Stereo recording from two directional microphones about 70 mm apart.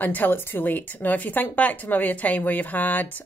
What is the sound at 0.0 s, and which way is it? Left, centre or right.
Speech, left.